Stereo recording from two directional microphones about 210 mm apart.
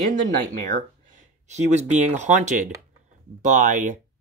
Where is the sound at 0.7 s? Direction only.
40° right (ahead or behind).